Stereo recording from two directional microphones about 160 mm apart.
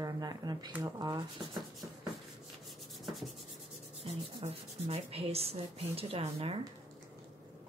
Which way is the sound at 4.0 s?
40° right (ahead or behind).